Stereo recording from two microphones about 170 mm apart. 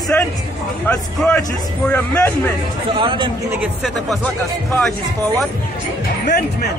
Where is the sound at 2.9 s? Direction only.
30° right (ahead or behind).